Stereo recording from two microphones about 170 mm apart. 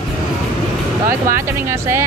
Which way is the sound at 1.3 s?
15° right (ahead or behind).